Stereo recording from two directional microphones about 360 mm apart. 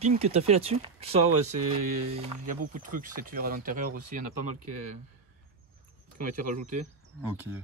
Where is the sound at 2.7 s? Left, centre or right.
Right.